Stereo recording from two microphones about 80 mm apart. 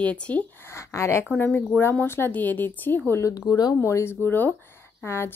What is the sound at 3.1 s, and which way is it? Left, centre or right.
Speech, left.